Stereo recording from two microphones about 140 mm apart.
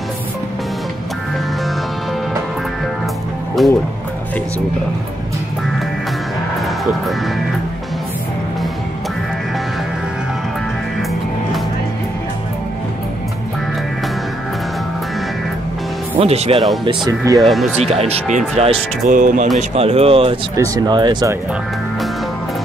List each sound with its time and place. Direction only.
3.6 s speech: centre (ahead or behind)
16.2 s speech: 45° right (ahead or behind)
17.1 s speech: 25° right (ahead or behind)
17.4 s speech: centre (ahead or behind)
17.7 s speech: 45° right (ahead or behind)
19.0 s speech: 70° right (ahead or behind)
19.7 s speech: 45° right (ahead or behind)
20.5 s speech: 25° right (ahead or behind)